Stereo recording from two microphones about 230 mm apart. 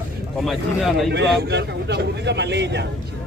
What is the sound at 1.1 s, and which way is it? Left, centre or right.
A man's voice, right.